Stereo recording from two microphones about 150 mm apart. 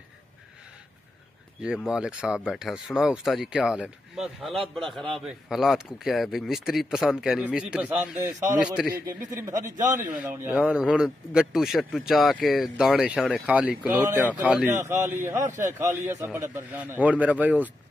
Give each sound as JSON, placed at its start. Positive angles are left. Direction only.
{"t": 1.9, "sound": "speech", "side_deg": -5}
{"t": 8.3, "sound": "a man's voice", "side_deg": -20}
{"t": 8.5, "sound": "a man's voice", "side_deg": -5}
{"t": 14.9, "sound": "a man's voice", "side_deg": -15}